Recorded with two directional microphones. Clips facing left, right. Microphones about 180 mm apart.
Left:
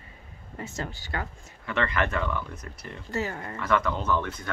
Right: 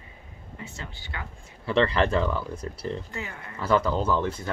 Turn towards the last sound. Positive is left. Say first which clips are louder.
# right 3 dB
turn(degrees=-30)  # may be behind; listen again after turning